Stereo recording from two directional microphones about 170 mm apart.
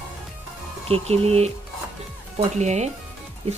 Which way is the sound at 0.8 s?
35° right (ahead or behind).